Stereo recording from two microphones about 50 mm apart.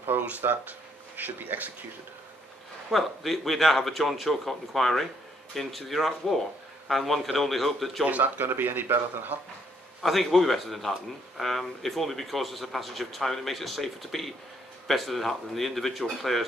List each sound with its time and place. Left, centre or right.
0.2 s speech: right
2.9 s speech: centre
8.2 s speech: right
10.0 s speech: centre